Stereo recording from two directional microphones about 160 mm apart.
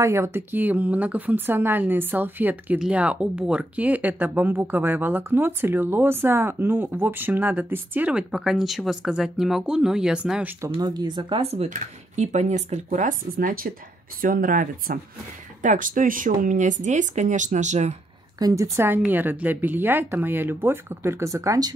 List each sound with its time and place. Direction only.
0.0 s speech: 15° right (ahead or behind)
10.7 s speech: 25° right (ahead or behind); by 17.9 s 45° right (ahead or behind)
18.4 s speech: 20° right (ahead or behind)